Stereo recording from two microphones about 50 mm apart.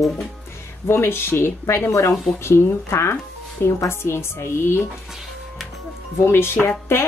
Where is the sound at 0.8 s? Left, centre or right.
Left.